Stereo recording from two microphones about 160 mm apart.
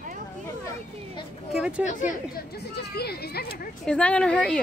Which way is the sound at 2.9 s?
85° left.